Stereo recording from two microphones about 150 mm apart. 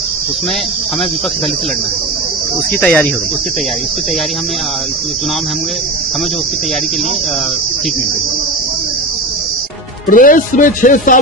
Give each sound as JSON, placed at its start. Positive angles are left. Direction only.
{"t": 2.8, "sound": "speech", "side_deg": 10}
{"t": 10.0, "sound": "speech", "side_deg": 65}